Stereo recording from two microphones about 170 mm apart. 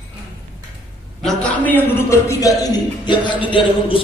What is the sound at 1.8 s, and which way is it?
A man's voice, 15° left (ahead or behind).